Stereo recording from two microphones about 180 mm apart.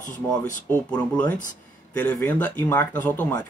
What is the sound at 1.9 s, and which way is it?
Speech, 10° left (ahead or behind).